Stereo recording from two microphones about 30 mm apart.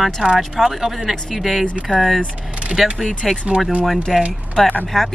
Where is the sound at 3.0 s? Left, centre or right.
Centre.